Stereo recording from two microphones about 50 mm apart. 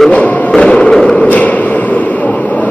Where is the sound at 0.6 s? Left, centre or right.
Left.